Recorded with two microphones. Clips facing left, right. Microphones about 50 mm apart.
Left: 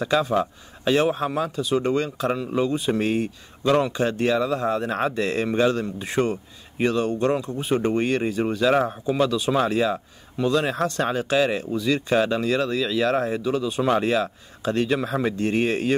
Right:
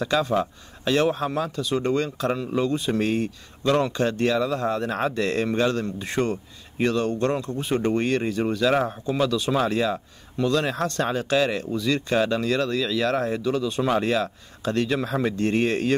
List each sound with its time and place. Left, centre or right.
0.0 s speech: centre
2.3 s speech: centre
2.6 s speech: centre